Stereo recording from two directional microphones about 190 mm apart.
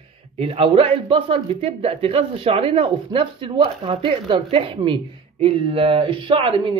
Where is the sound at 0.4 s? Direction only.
30° right (ahead or behind).